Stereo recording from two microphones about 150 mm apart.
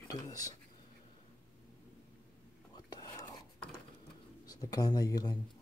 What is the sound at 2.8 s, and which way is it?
Dishes, 30° left (ahead or behind).